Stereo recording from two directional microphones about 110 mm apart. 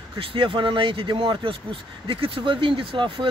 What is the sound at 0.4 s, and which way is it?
Speech, 45° right (ahead or behind).